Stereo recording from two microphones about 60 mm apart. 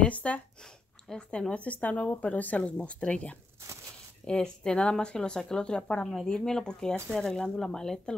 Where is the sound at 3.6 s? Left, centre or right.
Right.